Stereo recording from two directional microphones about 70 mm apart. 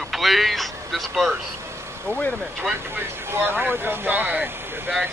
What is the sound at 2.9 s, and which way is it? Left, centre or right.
Speech, right.